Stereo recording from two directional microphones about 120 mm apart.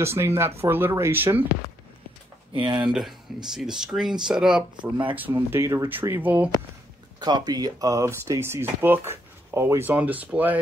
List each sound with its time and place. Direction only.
0.0 s speech: 20° right (ahead or behind)
2.5 s speech: 40° right (ahead or behind)
2.8 s speech: 5° right (ahead or behind)
5.1 s speech: 15° right (ahead or behind)
7.2 s speech: 35° right (ahead or behind); by 10.6 s 15° right (ahead or behind)